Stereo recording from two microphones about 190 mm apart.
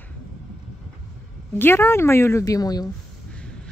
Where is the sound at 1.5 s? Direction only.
10° left (ahead or behind).